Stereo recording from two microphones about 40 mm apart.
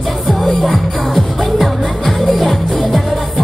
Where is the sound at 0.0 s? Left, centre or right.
Centre.